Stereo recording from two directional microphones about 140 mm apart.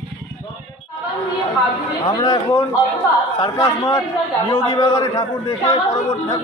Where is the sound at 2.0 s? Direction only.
30° left (ahead or behind).